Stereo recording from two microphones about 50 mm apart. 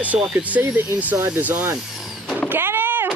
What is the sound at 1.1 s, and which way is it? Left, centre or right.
Speech, right.